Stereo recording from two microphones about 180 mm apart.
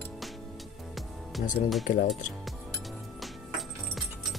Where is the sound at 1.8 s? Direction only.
45° left (ahead or behind).